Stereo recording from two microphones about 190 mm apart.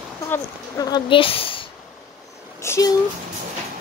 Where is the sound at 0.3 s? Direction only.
20° left (ahead or behind).